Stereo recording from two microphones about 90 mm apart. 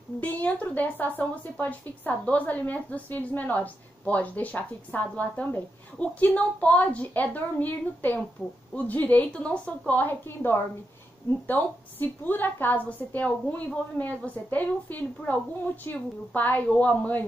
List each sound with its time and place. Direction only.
0.2 s a woman's voice: 20° left (ahead or behind)